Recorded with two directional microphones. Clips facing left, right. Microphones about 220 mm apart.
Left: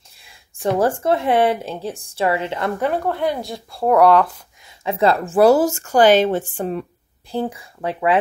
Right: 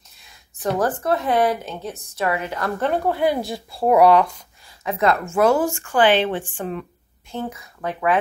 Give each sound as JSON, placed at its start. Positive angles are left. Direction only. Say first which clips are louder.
{"t": 0.2, "sound": "speech", "louder": "left 3 dB", "side_deg": 30}
{"t": 3.1, "sound": "speech", "louder": "right 1 dB", "side_deg": -5}
{"t": 4.6, "sound": "a sound", "louder": "left 3 dB", "side_deg": 30}
{"t": 5.3, "sound": "speech", "louder": "left 7 dB", "side_deg": 35}